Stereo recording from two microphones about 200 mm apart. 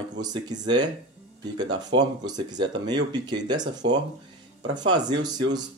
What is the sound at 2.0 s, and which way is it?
Speech, 20° right (ahead or behind).